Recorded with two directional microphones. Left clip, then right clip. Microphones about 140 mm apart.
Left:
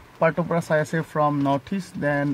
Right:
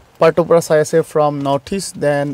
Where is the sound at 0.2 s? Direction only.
45° right (ahead or behind).